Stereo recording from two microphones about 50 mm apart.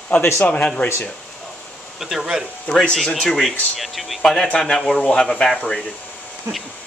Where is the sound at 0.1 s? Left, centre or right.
Left.